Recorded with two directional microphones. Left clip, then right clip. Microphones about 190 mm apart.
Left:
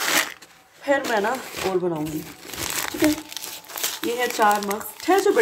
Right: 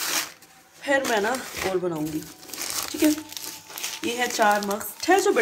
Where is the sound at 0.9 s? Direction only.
Centre (ahead or behind).